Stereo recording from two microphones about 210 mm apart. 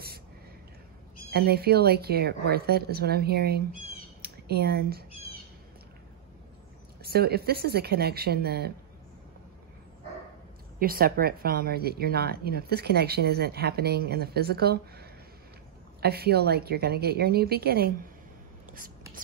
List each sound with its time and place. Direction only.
1.3 s a woman's voice: 50° right (ahead or behind)
4.2 s a sound: 50° right (ahead or behind)
5.1 s bird: 30° left (ahead or behind)
7.0 s a woman's voice: 50° right (ahead or behind)
10.8 s a woman's voice: 45° right (ahead or behind)